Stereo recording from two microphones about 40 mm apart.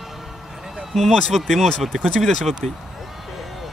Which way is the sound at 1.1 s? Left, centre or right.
Centre.